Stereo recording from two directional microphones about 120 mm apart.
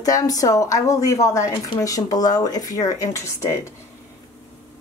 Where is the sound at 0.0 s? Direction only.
30° left (ahead or behind).